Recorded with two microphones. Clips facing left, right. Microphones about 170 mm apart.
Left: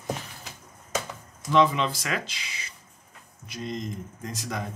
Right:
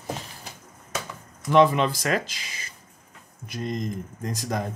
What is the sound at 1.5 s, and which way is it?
A man's voice, 50° right (ahead or behind).